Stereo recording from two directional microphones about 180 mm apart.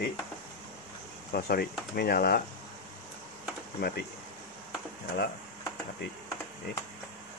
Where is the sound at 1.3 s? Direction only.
55° left (ahead or behind).